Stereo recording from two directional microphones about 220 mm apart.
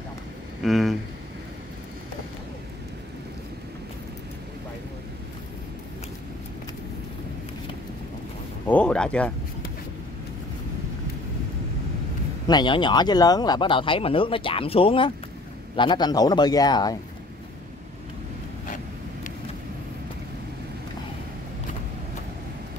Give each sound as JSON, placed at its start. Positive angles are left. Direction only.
{"t": 0.6, "sound": "speech", "side_deg": 0}
{"t": 8.6, "sound": "a sound", "side_deg": 5}
{"t": 12.4, "sound": "a man's voice", "side_deg": 20}